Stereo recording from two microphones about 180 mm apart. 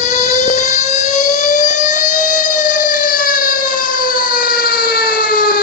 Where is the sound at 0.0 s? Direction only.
40° left (ahead or behind).